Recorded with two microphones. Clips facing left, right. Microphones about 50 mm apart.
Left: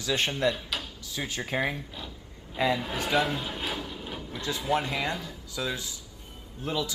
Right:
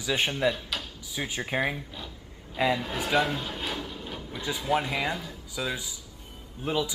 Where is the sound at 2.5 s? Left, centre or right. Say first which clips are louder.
Right 1 dB; centre.